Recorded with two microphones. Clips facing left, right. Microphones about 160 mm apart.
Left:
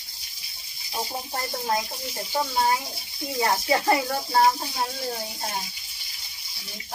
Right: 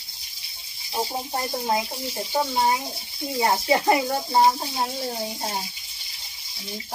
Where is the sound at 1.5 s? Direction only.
15° right (ahead or behind).